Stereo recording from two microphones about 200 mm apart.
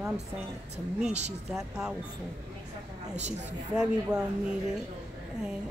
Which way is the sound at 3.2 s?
35° right (ahead or behind).